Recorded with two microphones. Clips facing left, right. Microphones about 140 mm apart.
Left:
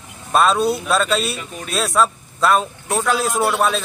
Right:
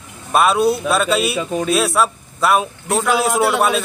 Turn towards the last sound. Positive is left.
turn(degrees=-5)  # may be behind; listen again after turning